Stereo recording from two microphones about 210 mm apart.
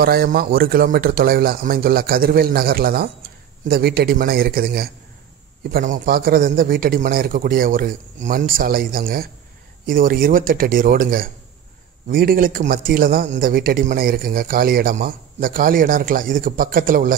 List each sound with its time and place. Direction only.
0.0 s a man's voice: 45° right (ahead or behind)